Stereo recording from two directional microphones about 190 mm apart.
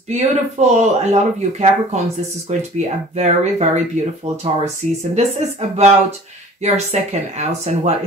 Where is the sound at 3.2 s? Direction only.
35° right (ahead or behind).